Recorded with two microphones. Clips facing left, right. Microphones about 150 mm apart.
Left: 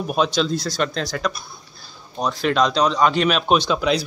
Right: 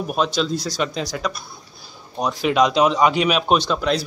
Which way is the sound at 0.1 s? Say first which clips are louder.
Left 2 dB; centre (ahead or behind).